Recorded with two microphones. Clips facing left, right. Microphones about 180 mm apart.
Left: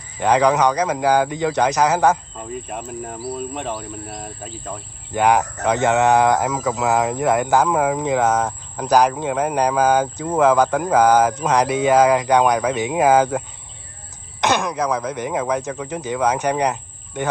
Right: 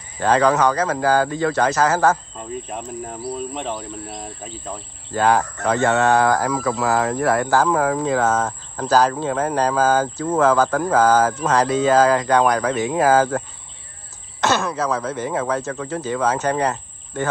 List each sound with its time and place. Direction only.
0.2 s speech: 15° left (ahead or behind)
2.7 s speech: 5° left (ahead or behind)
5.1 s speech: 15° left (ahead or behind)
14.4 s speech: 15° left (ahead or behind)